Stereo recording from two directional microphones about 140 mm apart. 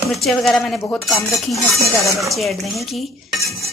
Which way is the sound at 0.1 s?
Centre (ahead or behind).